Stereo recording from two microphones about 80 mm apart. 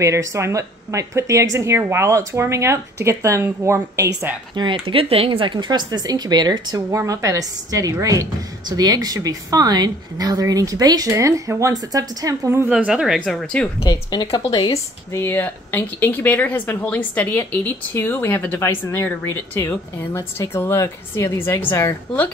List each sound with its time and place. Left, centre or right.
0.0 s speech: right
4.6 s speech: right
5.4 s speech: right
6.9 s speech: right
8.6 s speech: right
11.7 s speech: right
12.6 s speech: centre
13.6 s speech: centre
14.3 s speech: left
14.7 s a woman's voice: left
21.4 s speech: left